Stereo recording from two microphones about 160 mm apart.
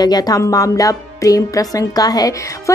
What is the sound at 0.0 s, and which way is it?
Speech, 25° left (ahead or behind).